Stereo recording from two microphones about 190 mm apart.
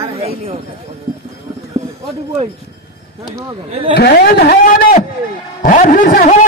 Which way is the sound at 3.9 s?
55° left (ahead or behind).